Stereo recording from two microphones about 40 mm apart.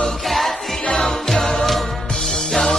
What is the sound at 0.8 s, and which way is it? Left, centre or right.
Music, centre.